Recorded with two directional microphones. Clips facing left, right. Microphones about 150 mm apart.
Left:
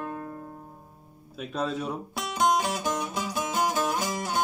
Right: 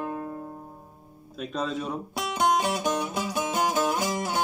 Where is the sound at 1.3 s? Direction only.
5° left (ahead or behind).